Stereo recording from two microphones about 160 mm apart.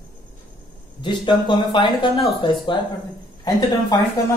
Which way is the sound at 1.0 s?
30° left (ahead or behind).